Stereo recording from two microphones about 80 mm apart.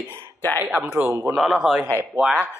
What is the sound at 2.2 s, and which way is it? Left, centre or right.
Speech, centre.